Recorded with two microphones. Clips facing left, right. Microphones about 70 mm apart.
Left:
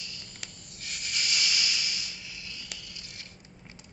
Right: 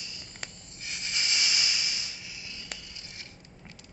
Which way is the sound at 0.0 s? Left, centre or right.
Right.